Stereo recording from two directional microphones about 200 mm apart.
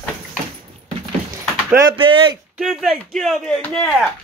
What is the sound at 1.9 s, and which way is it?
Speech, 25° right (ahead or behind).